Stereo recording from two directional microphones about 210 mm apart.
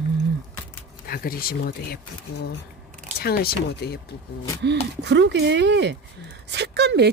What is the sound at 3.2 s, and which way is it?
Speech, 45° left (ahead or behind).